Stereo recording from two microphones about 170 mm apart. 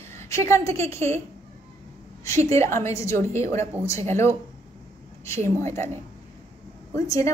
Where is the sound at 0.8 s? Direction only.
15° left (ahead or behind).